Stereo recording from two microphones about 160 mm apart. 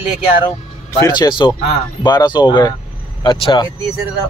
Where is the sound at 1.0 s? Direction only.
25° left (ahead or behind).